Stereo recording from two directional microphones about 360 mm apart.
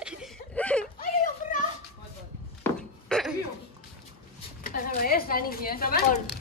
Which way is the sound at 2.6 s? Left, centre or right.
Centre.